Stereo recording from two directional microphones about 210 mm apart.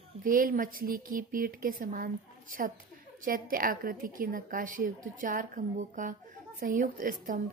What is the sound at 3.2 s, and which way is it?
Speech, 40° right (ahead or behind).